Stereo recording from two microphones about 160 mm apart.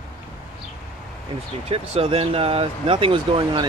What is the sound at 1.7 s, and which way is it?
Speech, 35° right (ahead or behind).